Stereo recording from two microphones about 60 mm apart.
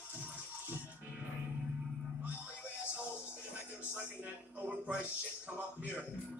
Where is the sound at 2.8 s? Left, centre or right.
Right.